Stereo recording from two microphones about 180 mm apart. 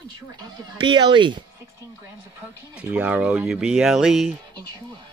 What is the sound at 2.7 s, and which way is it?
Speech, 10° right (ahead or behind).